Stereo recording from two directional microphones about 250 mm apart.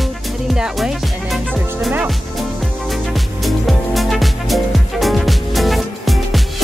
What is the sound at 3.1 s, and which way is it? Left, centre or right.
Music, centre.